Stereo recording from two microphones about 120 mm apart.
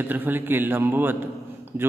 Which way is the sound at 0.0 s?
15° right (ahead or behind).